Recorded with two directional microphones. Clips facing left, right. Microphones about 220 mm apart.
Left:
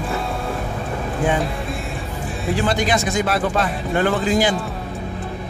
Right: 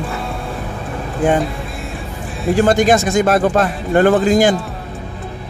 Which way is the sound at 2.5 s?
45° right (ahead or behind).